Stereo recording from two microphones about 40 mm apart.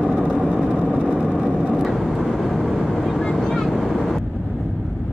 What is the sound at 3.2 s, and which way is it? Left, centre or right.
Boat, centre.